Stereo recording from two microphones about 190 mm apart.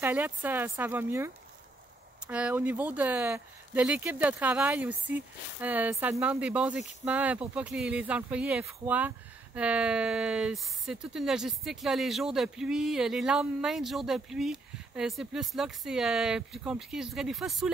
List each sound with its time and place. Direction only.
0.0 s speech: 10° right (ahead or behind)